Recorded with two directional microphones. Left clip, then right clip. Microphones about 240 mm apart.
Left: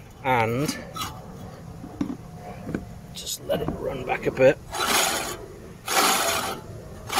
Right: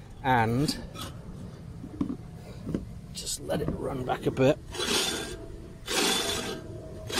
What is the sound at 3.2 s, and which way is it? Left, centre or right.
Speech, right.